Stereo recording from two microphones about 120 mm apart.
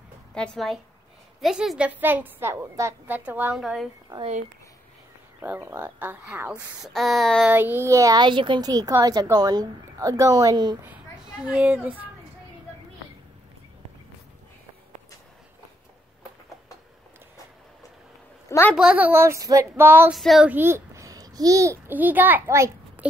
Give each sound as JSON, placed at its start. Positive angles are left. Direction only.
{"t": 0.3, "sound": "a woman's voice", "side_deg": 5}
{"t": 3.1, "sound": "a woman's voice", "side_deg": -15}
{"t": 3.5, "sound": "a sound", "side_deg": 0}
{"t": 4.2, "sound": "speech", "side_deg": -70}
{"t": 5.4, "sound": "a woman's voice", "side_deg": -15}
{"t": 6.8, "sound": "a sound", "side_deg": 0}
{"t": 7.4, "sound": "speech", "side_deg": -15}
{"t": 11.2, "sound": "a woman's voice", "side_deg": -10}
{"t": 18.8, "sound": "speech", "side_deg": -10}
{"t": 20.1, "sound": "a sound", "side_deg": 0}
{"t": 20.4, "sound": "a child's voice", "side_deg": -20}
{"t": 21.9, "sound": "a woman's voice", "side_deg": -15}